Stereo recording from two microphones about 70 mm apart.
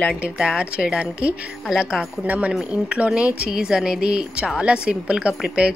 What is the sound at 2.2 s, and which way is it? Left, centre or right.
A woman's voice, right.